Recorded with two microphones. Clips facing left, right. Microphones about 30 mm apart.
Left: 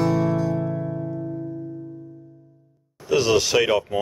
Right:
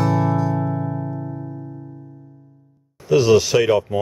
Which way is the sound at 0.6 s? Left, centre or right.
Right.